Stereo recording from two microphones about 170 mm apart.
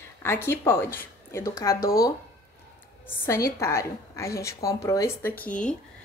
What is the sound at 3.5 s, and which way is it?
Speech, 15° left (ahead or behind).